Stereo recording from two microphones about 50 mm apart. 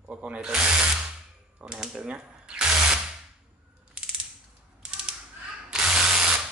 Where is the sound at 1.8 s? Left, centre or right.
Centre.